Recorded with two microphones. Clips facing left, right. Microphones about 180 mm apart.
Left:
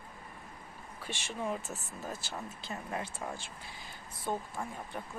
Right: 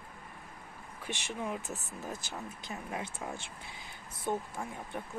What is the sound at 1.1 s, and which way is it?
Speech, 15° right (ahead or behind).